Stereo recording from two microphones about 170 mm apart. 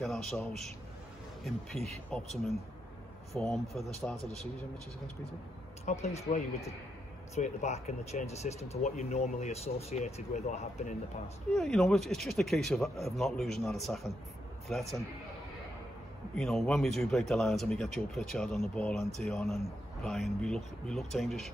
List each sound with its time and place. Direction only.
0.0 s speech: centre (ahead or behind)
5.9 s speech: 40° left (ahead or behind)
11.5 s speech: centre (ahead or behind)
16.3 s speech: centre (ahead or behind)